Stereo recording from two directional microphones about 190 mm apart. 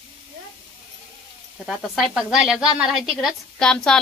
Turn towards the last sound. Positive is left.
turn(degrees=5)  # may be behind; listen again after turning